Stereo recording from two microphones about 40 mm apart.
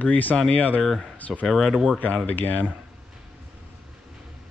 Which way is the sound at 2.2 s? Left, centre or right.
Left.